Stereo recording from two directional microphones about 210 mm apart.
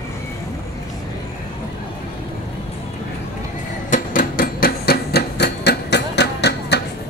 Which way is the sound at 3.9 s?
40° left (ahead or behind).